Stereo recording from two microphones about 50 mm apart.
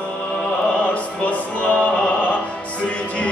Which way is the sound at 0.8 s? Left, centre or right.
Left.